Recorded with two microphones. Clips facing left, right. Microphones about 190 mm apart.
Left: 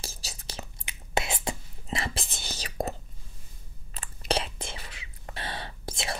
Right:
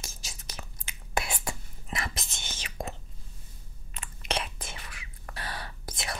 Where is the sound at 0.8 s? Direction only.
25° left (ahead or behind).